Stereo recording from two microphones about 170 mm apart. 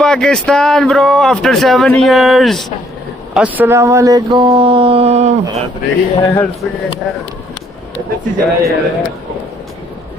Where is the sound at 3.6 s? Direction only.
15° right (ahead or behind); by 5.6 s 40° right (ahead or behind).